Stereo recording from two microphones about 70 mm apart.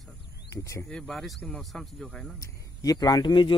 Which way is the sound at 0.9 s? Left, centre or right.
Centre.